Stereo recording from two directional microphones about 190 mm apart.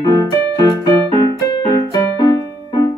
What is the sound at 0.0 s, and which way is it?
Music, 20° left (ahead or behind).